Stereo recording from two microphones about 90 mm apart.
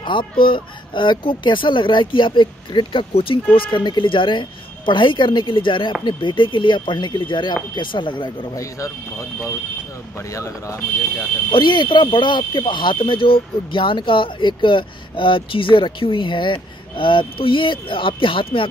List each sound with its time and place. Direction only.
0.0 s speech: 65° left (ahead or behind)
8.5 s speech: 35° left (ahead or behind)
10.3 s speech: 35° left (ahead or behind)
11.5 s speech: 60° left (ahead or behind); by 18.7 s 75° left (ahead or behind)